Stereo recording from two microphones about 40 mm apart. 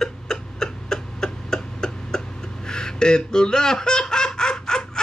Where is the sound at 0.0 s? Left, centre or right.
Centre.